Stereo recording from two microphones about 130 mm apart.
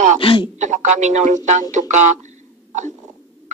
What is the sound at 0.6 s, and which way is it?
Speech, 65° right (ahead or behind).